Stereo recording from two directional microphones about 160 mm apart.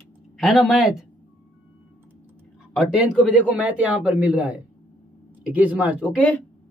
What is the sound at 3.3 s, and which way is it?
A man's voice, 10° right (ahead or behind).